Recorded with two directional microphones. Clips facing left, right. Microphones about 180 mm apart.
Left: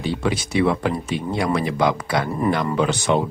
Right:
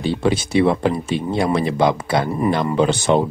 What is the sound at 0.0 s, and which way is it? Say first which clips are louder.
Speech: right 4 dB; 30° right (ahead or behind).